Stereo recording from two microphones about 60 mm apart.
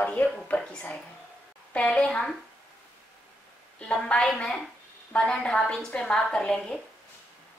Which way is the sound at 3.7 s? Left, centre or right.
Centre.